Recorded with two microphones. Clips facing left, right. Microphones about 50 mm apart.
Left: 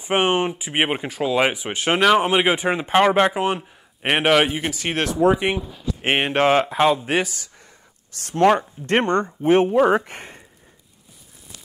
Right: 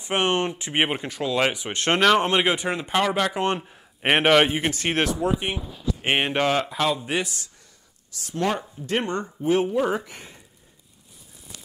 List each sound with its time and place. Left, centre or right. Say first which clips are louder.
0.0 s speech: left 3 dB; centre
3.3 s speech: left 2 dB; centre
5.2 s speech: left 7 dB; left
6.0 s speech: left 4 dB; centre
8.1 s speech: left 9 dB; left